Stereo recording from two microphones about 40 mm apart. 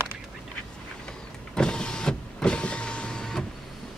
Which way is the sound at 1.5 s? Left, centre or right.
Left.